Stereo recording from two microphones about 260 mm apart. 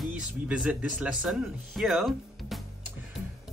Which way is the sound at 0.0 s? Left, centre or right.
Centre.